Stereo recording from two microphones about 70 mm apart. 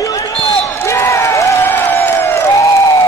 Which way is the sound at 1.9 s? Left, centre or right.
Left.